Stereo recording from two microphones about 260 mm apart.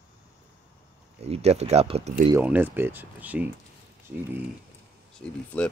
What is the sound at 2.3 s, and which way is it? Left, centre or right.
Speech, centre.